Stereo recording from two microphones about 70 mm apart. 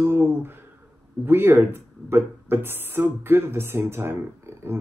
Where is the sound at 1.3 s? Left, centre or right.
Right.